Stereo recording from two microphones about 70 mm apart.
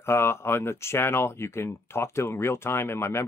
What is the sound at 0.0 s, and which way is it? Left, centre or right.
Speech, left.